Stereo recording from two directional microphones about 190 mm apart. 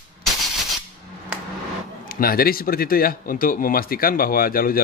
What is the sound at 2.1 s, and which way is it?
Speech, 50° left (ahead or behind).